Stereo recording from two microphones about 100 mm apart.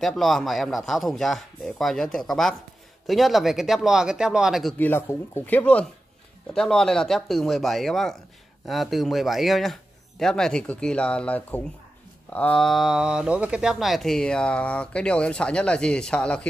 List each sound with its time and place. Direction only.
0.0 s speech: centre (ahead or behind)
4.7 s speech: 20° left (ahead or behind)
12.5 s speech: centre (ahead or behind)